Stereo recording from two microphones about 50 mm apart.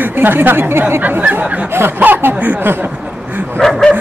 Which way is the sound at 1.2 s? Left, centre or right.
Right.